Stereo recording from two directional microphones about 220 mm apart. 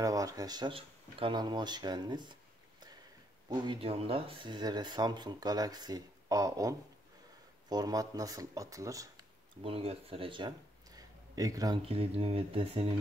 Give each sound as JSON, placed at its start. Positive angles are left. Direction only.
{"t": 0.0, "sound": "speech", "side_deg": -15}
{"t": 3.4, "sound": "speech", "side_deg": -20}
{"t": 7.7, "sound": "speech", "side_deg": -15}
{"t": 9.6, "sound": "speech", "side_deg": -25}